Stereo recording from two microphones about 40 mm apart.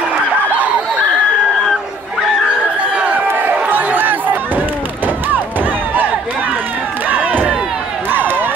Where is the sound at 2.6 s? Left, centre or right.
Right.